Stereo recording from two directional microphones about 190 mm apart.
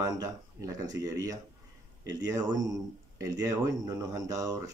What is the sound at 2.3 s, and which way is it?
Speech, 20° right (ahead or behind).